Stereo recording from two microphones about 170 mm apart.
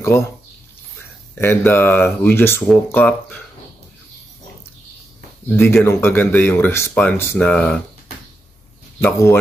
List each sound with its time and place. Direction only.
0.0 s speech: 15° left (ahead or behind)
1.4 s speech: 15° left (ahead or behind)
5.5 s speech: 10° left (ahead or behind)
9.0 s speech: 10° left (ahead or behind)